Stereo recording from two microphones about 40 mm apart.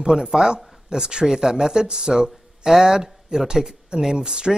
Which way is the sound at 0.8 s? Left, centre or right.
Centre.